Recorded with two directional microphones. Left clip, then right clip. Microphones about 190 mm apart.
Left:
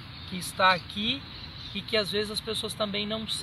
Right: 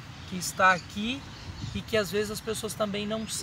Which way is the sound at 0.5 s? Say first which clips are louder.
Even; 5° right (ahead or behind).